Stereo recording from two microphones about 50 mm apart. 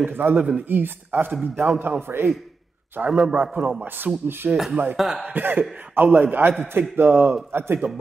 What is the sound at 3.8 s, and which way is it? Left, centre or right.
Speech, right.